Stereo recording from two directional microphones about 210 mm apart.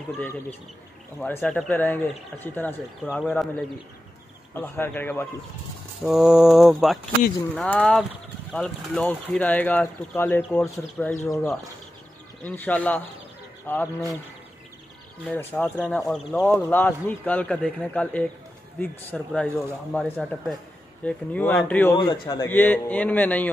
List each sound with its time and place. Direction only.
1.2 s speech: 5° left (ahead or behind)
4.6 s speech: 10° left (ahead or behind)
6.0 s speech: centre (ahead or behind)
15.2 s speech: 10° left (ahead or behind)
22.1 s speech: 20° left (ahead or behind)
22.5 s speech: 10° left (ahead or behind)